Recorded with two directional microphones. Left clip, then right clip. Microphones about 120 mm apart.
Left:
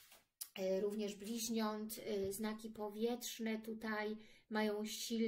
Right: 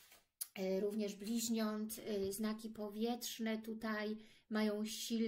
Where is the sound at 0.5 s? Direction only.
35° right (ahead or behind).